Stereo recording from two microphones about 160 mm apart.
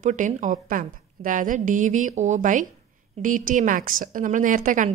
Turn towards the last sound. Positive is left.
turn(degrees=-55)  # may be behind; listen again after turning